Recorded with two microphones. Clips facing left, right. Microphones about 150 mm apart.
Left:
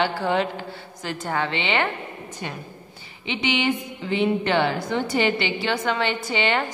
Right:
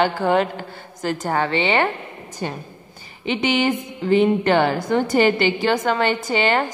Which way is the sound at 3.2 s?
45° right (ahead or behind).